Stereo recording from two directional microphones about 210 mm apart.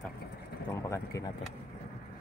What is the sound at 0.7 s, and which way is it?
Speech, 15° left (ahead or behind).